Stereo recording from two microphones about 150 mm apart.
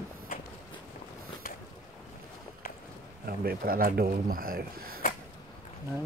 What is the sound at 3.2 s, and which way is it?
Speech, 90° right.